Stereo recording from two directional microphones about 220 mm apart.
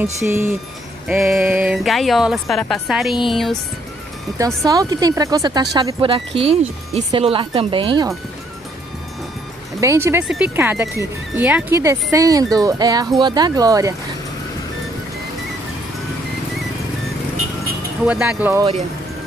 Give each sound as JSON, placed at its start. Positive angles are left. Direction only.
{"t": 0.0, "sound": "speech", "side_deg": -10}
{"t": 4.6, "sound": "speech", "side_deg": -15}
{"t": 9.8, "sound": "speech", "side_deg": -10}
{"t": 18.0, "sound": "speech", "side_deg": -5}